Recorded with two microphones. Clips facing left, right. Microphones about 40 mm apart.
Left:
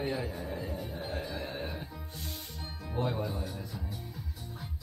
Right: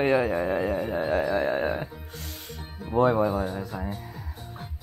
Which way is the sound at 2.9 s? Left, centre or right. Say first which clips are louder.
Right 12 dB; right.